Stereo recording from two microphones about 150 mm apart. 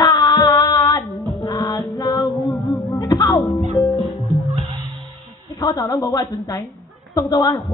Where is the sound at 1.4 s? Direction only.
25° left (ahead or behind).